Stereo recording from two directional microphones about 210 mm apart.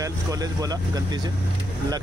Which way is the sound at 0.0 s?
15° right (ahead or behind).